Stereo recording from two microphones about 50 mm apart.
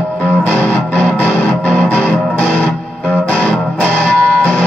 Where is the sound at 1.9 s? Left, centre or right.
Left.